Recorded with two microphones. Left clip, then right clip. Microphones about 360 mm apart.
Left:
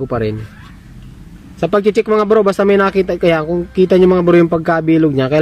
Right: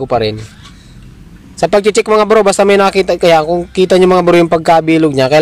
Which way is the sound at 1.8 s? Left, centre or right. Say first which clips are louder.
Right 3 dB; centre.